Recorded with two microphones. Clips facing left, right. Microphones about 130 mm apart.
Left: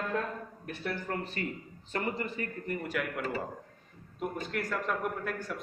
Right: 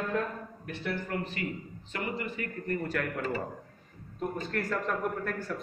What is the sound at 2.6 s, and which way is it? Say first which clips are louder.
A man's voice: right 3 dB; 10° left (ahead or behind).